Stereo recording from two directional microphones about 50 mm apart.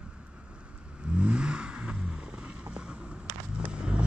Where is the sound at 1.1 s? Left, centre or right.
Right.